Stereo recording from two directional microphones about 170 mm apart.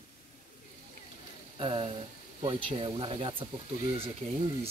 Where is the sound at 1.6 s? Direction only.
30° right (ahead or behind).